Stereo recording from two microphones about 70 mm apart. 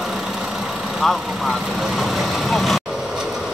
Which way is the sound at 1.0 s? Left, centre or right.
Centre.